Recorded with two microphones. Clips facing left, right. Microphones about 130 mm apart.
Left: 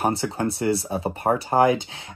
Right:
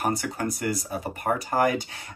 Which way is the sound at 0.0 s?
30° left (ahead or behind).